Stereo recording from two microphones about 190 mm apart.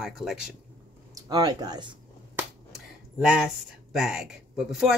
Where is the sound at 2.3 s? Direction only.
5° right (ahead or behind).